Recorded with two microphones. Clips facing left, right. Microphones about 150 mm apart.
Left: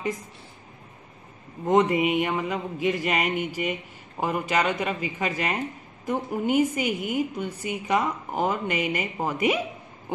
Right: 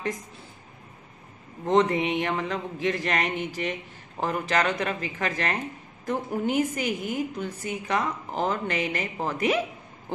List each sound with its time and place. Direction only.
1.7 s a woman's voice: 10° left (ahead or behind)